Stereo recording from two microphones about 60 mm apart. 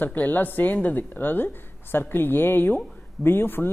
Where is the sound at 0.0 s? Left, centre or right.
Left.